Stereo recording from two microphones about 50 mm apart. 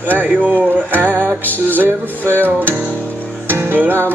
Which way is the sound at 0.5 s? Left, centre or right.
Right.